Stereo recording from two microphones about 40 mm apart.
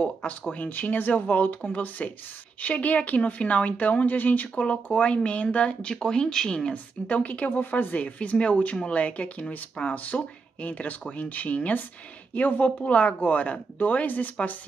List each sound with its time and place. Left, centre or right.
0.5 s speech: left
4.8 s speech: left
6.0 s speech: centre
6.7 s speech: left